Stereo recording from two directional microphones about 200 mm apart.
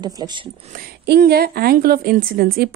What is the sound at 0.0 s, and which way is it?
Speech, 20° right (ahead or behind).